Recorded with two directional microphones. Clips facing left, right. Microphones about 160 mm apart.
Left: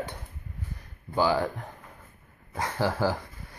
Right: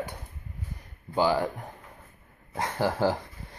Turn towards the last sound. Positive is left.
turn(degrees=-20)  # may be behind; listen again after turning